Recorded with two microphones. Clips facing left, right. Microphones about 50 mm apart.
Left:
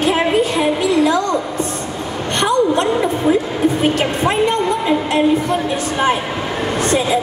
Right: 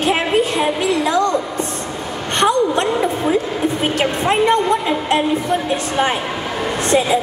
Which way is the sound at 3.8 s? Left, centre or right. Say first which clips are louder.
Left 2 dB; right.